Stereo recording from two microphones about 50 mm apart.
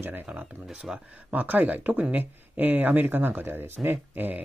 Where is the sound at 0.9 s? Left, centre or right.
Centre.